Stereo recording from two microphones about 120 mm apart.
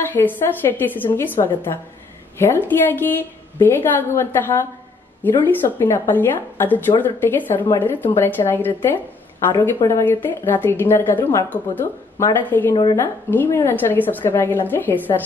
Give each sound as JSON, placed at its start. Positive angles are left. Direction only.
{"t": 0.1, "sound": "a woman's voice", "side_deg": 15}